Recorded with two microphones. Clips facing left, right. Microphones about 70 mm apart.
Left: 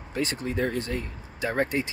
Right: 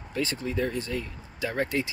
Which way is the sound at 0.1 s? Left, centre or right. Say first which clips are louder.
Left 1 dB; left.